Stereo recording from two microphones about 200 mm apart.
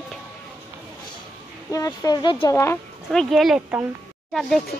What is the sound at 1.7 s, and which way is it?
Speech, 15° left (ahead or behind).